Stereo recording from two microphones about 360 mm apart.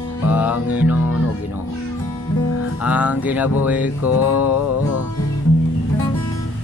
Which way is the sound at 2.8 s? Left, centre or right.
Centre.